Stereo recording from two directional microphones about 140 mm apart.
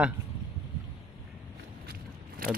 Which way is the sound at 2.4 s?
90° right.